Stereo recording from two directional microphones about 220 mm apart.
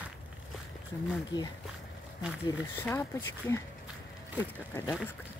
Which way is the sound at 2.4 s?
10° left (ahead or behind).